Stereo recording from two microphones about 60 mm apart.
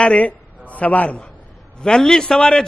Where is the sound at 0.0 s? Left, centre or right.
Left.